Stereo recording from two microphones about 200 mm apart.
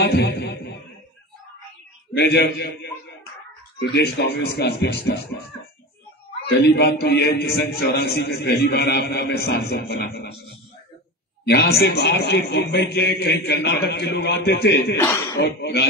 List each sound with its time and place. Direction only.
0.0 s a man's voice: 55° left (ahead or behind)
2.1 s a man's voice: 60° left (ahead or behind)
3.9 s a man's voice: 55° left (ahead or behind)
6.6 s a man's voice: 55° left (ahead or behind)
11.4 s a man's voice: 55° left (ahead or behind)
15.0 s speech: 15° left (ahead or behind)
15.4 s a man's voice: 55° left (ahead or behind)